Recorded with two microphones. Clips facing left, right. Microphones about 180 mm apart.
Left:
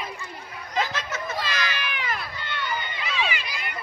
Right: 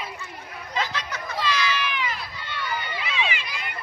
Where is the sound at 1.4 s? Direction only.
55° left (ahead or behind).